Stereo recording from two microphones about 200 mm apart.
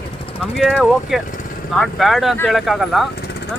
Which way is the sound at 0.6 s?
Centre (ahead or behind).